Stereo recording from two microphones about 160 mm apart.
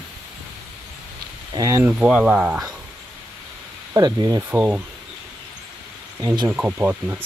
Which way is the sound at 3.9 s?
25° right (ahead or behind).